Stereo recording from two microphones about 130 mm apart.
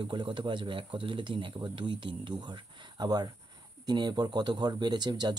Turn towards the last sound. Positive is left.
turn(degrees=-35)  # may be behind; listen again after turning